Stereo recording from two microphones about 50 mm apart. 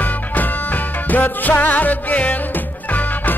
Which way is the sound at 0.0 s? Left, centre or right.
Left.